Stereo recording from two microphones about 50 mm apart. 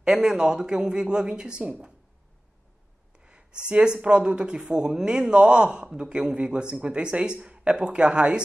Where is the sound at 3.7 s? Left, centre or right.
Centre.